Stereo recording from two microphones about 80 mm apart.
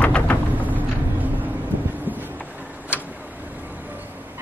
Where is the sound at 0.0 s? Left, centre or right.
Centre.